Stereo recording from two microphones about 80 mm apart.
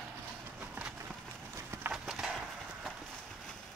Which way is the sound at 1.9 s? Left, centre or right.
Centre.